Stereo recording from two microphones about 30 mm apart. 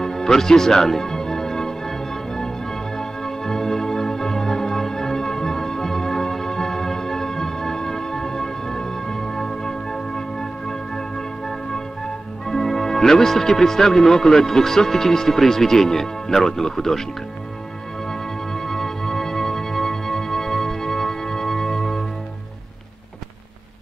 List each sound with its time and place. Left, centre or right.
0.0 s music: centre
12.4 s speech: centre
18.5 s music: centre